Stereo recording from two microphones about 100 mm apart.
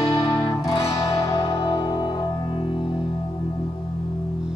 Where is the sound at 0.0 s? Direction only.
35° left (ahead or behind).